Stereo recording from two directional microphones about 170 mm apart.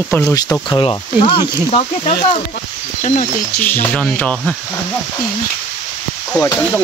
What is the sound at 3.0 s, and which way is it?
Speech, 45° left (ahead or behind).